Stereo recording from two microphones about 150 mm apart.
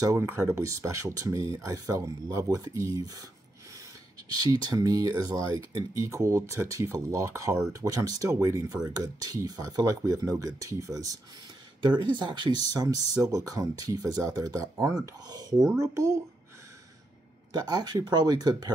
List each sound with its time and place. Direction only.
0.0 s speech: 15° right (ahead or behind)
4.5 s speech: 25° right (ahead or behind)
17.5 s speech: 25° right (ahead or behind)